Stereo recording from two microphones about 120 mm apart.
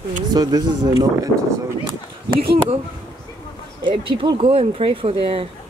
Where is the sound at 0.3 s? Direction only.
35° right (ahead or behind).